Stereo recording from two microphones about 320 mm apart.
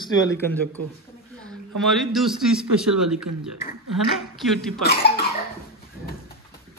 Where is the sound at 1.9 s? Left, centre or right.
Centre.